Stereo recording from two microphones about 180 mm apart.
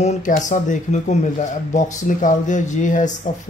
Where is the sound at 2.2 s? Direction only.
45° left (ahead or behind).